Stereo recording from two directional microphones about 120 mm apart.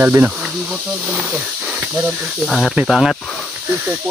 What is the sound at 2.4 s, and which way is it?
Speech, 5° left (ahead or behind).